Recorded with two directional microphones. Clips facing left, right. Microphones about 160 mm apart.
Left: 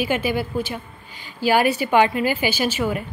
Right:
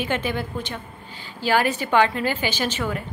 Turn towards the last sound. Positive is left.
turn(degrees=10)  # may be behind; listen again after turning